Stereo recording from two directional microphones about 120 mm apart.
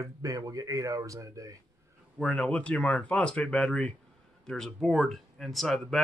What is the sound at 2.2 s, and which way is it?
Speech, 10° left (ahead or behind).